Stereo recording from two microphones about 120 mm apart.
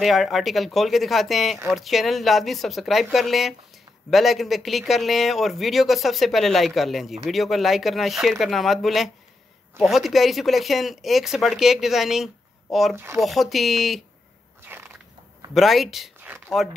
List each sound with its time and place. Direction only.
0.0 s a man's voice: centre (ahead or behind)
12.9 s speech: 20° right (ahead or behind)
13.2 s a man's voice: centre (ahead or behind)
14.6 s biting: 20° right (ahead or behind)
15.5 s a man's voice: centre (ahead or behind)